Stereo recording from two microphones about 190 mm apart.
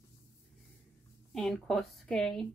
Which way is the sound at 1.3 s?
5° left (ahead or behind).